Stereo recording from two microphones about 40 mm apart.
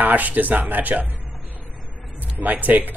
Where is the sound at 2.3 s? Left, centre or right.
Right.